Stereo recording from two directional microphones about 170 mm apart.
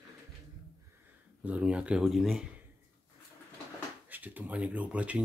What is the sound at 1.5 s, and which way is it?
Speech, 5° right (ahead or behind).